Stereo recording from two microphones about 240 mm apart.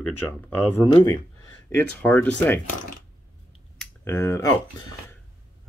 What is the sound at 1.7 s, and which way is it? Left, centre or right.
Speech, centre.